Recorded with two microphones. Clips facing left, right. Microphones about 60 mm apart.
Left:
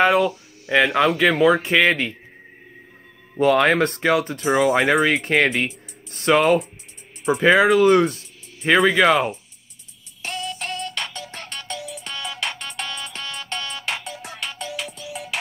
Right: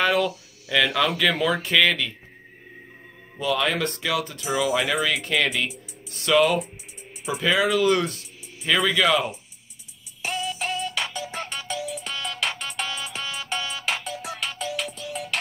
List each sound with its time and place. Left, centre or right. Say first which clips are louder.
0.0 s speech: left 5 dB; left
3.3 s speech: left 8 dB; left
4.5 s speech: left 6 dB; left
5.0 s speech: left 5 dB; left
10.2 s music: right 1 dB; centre